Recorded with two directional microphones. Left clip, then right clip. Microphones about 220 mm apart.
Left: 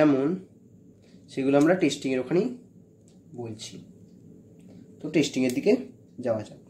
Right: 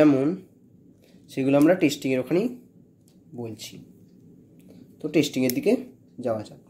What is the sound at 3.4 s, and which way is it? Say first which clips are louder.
Speech: right 2 dB; 30° right (ahead or behind).